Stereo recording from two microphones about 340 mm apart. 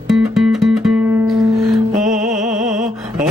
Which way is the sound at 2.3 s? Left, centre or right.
Right.